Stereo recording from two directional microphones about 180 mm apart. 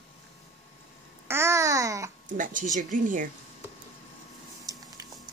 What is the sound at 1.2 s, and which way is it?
Babbling, 15° right (ahead or behind).